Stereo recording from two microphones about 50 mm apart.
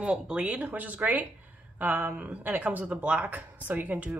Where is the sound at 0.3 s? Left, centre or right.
Right.